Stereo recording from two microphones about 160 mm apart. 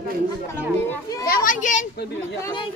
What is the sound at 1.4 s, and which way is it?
Speech, 50° left (ahead or behind).